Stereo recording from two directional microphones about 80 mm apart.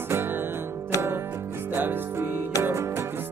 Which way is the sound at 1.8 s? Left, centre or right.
Right.